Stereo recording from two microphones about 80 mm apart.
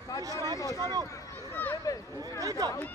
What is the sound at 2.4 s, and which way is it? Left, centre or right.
Speech, right.